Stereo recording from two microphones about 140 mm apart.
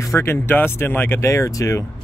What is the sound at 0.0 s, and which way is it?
Speech, 20° left (ahead or behind).